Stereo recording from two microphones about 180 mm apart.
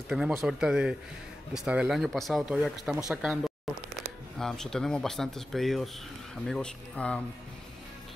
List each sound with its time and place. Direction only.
0.1 s speech: centre (ahead or behind)
4.4 s speech: 5° left (ahead or behind)